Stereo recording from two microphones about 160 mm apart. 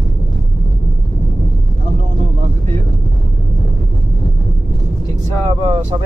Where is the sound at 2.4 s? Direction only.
50° right (ahead or behind).